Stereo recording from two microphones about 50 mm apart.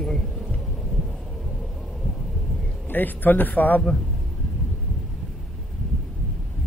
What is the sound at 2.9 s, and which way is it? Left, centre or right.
Speech, left.